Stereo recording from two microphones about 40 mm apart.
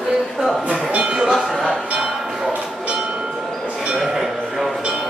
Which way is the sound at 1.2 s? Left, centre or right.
Centre.